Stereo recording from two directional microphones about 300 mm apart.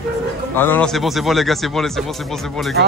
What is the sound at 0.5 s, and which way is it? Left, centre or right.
Speech, centre.